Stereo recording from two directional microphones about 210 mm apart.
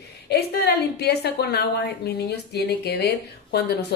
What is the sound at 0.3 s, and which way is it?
A woman's voice, 50° left (ahead or behind).